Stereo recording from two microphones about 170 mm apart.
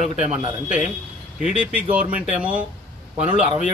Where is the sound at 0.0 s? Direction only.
45° left (ahead or behind).